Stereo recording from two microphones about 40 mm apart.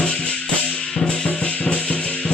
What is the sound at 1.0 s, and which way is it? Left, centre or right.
Music, left.